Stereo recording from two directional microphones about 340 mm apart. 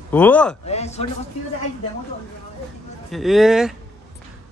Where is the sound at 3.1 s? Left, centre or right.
Centre.